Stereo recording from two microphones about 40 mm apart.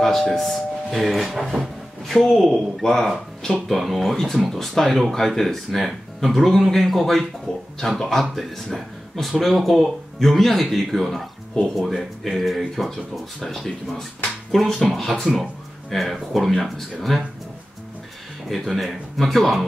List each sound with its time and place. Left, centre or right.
0.0 s speech: centre
7.5 s speech: centre
7.8 s speech: centre
18.7 s speech: centre